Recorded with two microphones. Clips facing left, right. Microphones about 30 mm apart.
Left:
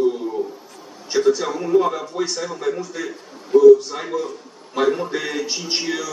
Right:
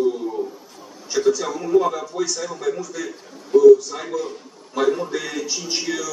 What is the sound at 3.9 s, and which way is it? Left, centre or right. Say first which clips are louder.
A man's voice: left 1 dB; centre.